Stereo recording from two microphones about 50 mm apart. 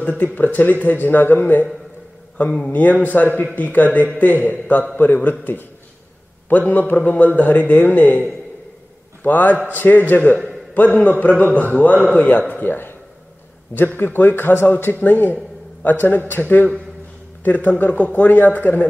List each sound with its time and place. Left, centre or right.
0.0 s a man's voice: left
2.7 s a man's voice: left